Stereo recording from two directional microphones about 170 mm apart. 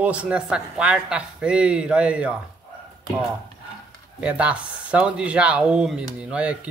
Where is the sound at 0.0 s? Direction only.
5° right (ahead or behind).